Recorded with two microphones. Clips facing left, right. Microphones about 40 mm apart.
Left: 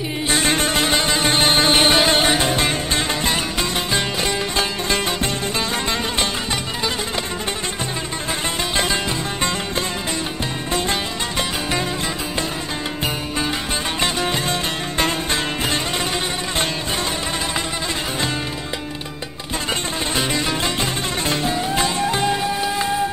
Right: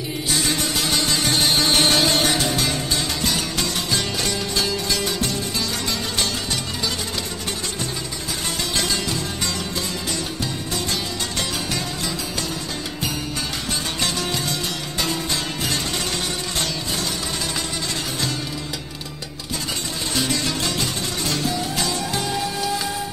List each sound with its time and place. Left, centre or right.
0.3 s music: left
8.7 s music: left
14.0 s music: left
20.2 s music: left